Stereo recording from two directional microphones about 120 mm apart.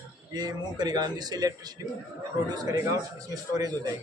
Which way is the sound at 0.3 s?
35° right (ahead or behind).